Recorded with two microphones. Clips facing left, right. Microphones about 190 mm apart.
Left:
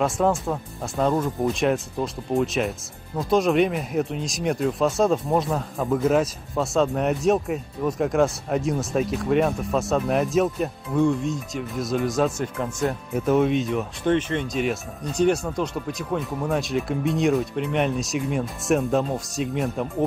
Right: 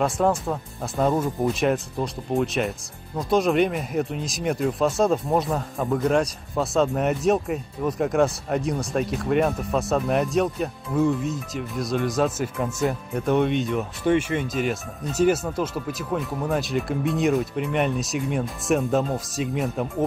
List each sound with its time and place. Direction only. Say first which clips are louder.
0.0 s speech: even; centre (ahead or behind)